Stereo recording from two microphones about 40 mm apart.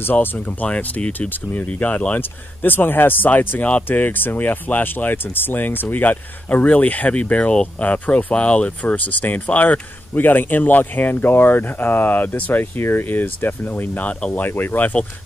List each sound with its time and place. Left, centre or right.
0.0 s speech: left
0.5 s speech: left
1.3 s speech: left
1.7 s speech: left
3.5 s speech: left
3.8 s speech: left
8.9 s speech: left